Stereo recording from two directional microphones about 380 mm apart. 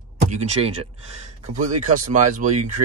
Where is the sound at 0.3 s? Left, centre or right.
Centre.